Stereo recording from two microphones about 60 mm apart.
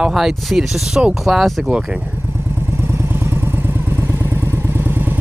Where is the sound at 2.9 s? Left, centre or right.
Right.